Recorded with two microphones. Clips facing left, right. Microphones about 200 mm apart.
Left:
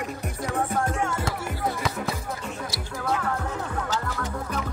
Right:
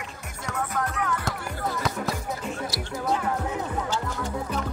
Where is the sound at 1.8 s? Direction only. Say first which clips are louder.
Even; centre (ahead or behind).